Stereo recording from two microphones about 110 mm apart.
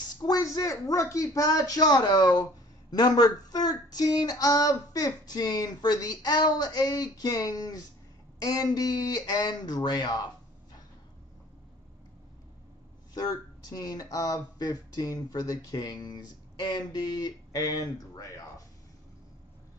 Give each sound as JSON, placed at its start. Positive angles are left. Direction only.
{"t": 0.2, "sound": "speech", "side_deg": 35}
{"t": 13.1, "sound": "speech", "side_deg": 40}